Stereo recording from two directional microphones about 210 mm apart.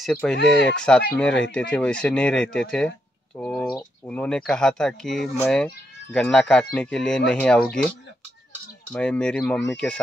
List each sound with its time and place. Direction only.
0.0 s speech: 5° left (ahead or behind)
0.4 s speech: 55° left (ahead or behind)
0.7 s speech: 5° left (ahead or behind)
8.9 s speech: 5° left (ahead or behind)